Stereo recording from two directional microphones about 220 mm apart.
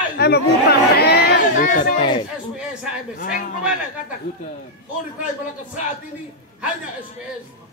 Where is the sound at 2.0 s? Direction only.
20° left (ahead or behind).